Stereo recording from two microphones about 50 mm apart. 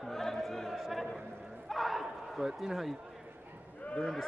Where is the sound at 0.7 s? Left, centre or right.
Centre.